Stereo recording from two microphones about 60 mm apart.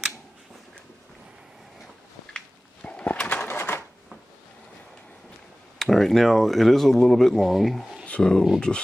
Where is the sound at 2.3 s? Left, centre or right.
Centre.